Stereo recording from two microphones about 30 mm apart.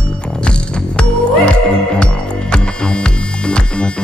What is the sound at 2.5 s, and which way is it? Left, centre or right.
Music, left.